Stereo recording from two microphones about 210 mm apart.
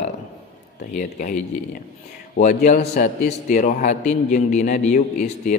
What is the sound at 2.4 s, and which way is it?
A man's voice, 35° left (ahead or behind).